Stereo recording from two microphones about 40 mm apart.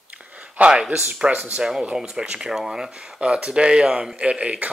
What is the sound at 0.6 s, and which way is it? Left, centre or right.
A man's voice, right.